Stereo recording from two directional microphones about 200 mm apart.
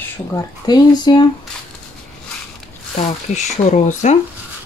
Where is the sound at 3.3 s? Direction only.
35° left (ahead or behind).